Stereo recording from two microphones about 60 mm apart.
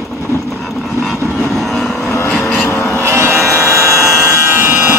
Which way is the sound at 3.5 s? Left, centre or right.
Left.